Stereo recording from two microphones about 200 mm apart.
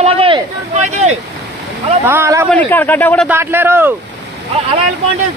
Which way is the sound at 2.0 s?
15° right (ahead or behind).